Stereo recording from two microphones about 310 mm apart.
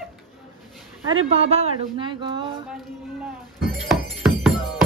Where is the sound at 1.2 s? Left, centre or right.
Centre.